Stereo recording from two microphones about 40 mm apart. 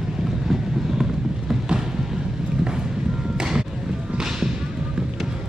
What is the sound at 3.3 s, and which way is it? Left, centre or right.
Music, centre.